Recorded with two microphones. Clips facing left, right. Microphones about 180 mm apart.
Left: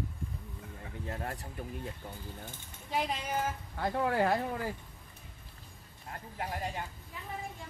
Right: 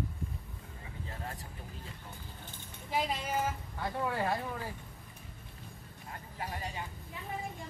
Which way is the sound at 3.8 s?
70° left (ahead or behind).